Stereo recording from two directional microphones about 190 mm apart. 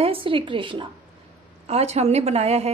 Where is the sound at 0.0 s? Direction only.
30° right (ahead or behind).